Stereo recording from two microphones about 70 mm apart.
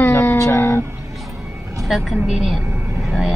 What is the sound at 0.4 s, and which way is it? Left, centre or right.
Music, left.